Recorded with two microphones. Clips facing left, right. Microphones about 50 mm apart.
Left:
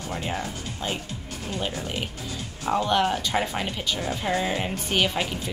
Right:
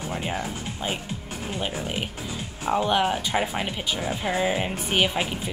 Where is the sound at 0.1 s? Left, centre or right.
Centre.